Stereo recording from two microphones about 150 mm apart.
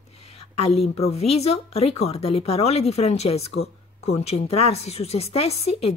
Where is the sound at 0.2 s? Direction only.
40° left (ahead or behind).